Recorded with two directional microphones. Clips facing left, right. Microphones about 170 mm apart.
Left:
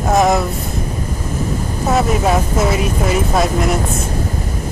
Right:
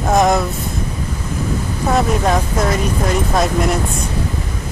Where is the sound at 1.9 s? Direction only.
5° left (ahead or behind).